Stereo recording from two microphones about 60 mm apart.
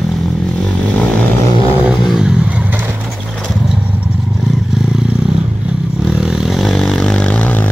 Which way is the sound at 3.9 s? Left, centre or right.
Right.